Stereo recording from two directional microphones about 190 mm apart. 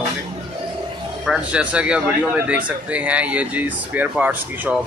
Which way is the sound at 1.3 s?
5° right (ahead or behind).